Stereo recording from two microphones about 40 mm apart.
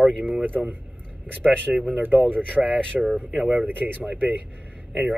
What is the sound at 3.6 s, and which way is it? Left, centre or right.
Speech, right.